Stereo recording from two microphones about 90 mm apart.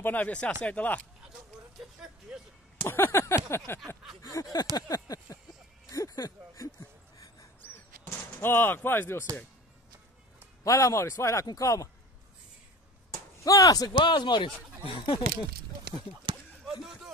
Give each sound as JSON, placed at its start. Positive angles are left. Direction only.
{"t": 0.0, "sound": "speech", "side_deg": 20}
{"t": 2.3, "sound": "speech", "side_deg": -10}
{"t": 2.9, "sound": "a sound", "side_deg": 25}
{"t": 4.2, "sound": "a man's voice", "side_deg": 40}
{"t": 5.9, "sound": "a sound", "side_deg": 40}
{"t": 8.0, "sound": "speech", "side_deg": 25}
{"t": 10.6, "sound": "a man's voice", "side_deg": 35}
{"t": 13.4, "sound": "speech", "side_deg": 40}
{"t": 13.9, "sound": "speech", "side_deg": 60}
{"t": 16.6, "sound": "a sound", "side_deg": -5}